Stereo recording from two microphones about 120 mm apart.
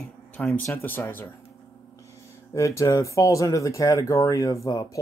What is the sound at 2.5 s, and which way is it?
Speech, 25° left (ahead or behind).